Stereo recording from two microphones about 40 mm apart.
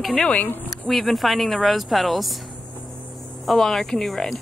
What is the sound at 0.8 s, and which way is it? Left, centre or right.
A woman's voice, centre.